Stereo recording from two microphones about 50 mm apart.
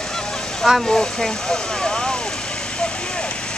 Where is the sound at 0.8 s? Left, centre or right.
Centre.